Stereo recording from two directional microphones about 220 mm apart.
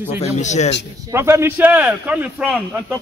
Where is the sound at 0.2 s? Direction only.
30° left (ahead or behind).